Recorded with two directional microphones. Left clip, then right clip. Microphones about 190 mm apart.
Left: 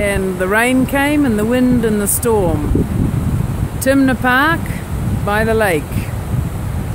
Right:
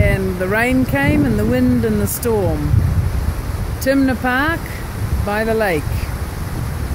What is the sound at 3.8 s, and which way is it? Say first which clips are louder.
Speech: left 3 dB; 5° left (ahead or behind).